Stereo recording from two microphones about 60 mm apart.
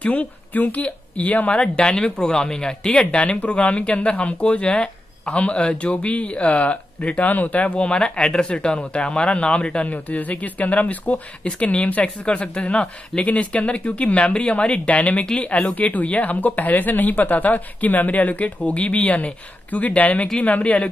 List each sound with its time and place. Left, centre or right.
0.0 s speech: left
1.6 s speech: centre